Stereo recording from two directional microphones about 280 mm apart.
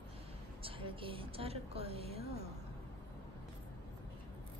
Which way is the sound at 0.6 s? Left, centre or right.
Centre.